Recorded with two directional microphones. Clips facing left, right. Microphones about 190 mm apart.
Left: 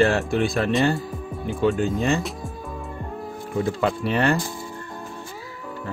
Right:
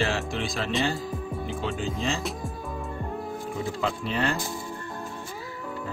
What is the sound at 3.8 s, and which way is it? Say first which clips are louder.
Speech: left 6 dB; 65° left (ahead or behind).